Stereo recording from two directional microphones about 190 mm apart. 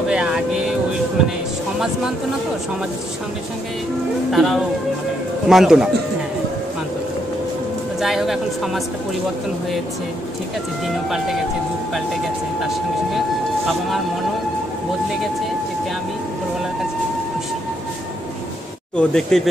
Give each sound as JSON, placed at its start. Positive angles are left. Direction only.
{"t": 0.1, "sound": "vehicle", "side_deg": -5}
{"t": 4.3, "sound": "a woman's voice", "side_deg": 0}
{"t": 8.0, "sound": "a woman's voice", "side_deg": 0}
{"t": 18.9, "sound": "a woman's voice", "side_deg": 5}